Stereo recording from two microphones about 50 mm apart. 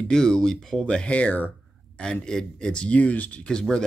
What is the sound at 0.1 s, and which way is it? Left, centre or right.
Speech, centre.